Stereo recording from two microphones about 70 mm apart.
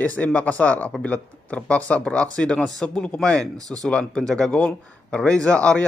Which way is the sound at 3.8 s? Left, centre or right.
Centre.